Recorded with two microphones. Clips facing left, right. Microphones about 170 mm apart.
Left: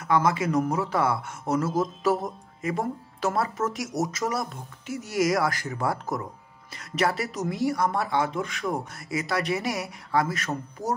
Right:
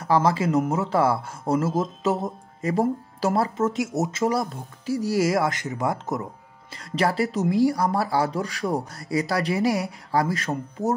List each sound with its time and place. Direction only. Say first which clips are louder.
0.0 s speech: right 3 dB; 30° right (ahead or behind)